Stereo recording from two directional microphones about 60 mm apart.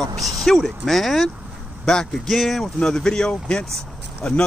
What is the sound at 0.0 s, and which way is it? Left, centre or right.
Speech, right.